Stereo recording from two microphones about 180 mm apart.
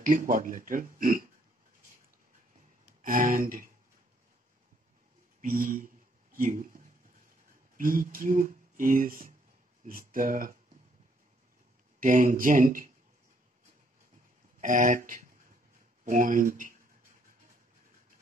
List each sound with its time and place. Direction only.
0.0 s a man's voice: 45° right (ahead or behind)
3.0 s speech: 50° right (ahead or behind)
5.4 s a man's voice: 50° right (ahead or behind)
6.3 s a sound: 50° right (ahead or behind)
7.7 s a man's voice: 50° right (ahead or behind)
12.0 s a man's voice: 50° right (ahead or behind)
14.6 s a man's voice: 45° right (ahead or behind)